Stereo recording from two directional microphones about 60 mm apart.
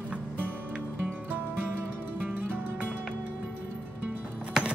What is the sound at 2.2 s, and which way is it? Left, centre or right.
Music, right.